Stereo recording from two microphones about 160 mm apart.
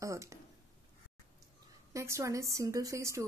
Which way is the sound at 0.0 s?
20° right (ahead or behind).